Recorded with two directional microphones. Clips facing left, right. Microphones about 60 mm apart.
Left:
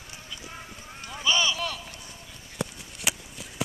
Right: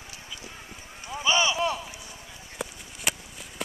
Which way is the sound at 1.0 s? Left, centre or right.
Centre.